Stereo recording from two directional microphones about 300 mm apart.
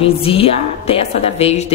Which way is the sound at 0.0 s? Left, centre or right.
Centre.